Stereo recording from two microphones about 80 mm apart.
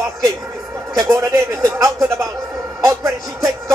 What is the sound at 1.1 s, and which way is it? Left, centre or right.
Speech, right.